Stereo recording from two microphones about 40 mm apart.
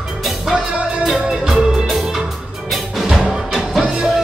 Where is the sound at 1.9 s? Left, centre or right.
Centre.